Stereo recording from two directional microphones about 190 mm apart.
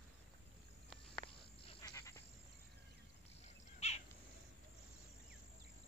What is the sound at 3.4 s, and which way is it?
Bird, 35° left (ahead or behind).